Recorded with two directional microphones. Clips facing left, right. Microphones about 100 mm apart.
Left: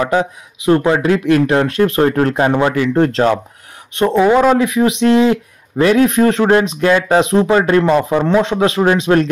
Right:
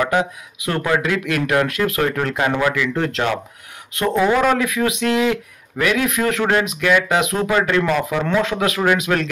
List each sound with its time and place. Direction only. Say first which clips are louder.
0.0 s speech: left 3 dB; 30° left (ahead or behind)